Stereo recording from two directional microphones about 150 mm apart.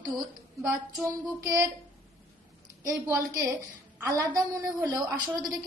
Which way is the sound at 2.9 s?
20° right (ahead or behind).